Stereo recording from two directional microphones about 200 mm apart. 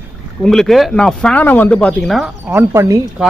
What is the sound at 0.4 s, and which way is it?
Speech, centre (ahead or behind).